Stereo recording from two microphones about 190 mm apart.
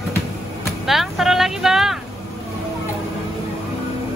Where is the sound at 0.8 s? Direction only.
Centre (ahead or behind).